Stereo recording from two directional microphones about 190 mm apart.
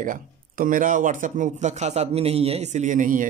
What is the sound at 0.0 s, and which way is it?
Speech, 45° right (ahead or behind).